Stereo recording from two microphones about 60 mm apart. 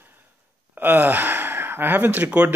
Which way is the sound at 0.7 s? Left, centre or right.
Right.